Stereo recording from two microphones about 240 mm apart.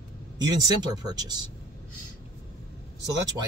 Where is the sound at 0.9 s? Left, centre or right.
Centre.